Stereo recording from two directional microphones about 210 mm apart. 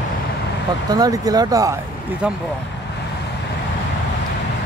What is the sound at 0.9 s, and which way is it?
Speech, 15° right (ahead or behind).